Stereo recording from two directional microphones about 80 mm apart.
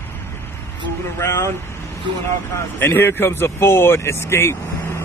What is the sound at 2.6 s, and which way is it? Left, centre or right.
Speech, left.